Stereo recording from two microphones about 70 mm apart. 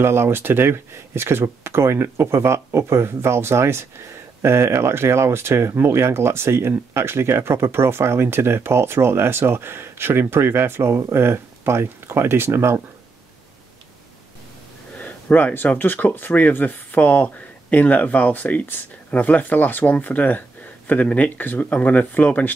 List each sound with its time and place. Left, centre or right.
0.0 s speech: right
15.0 s speech: left